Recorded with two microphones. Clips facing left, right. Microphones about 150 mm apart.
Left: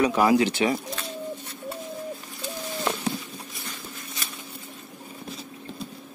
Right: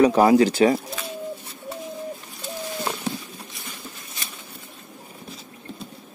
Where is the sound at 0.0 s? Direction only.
35° right (ahead or behind).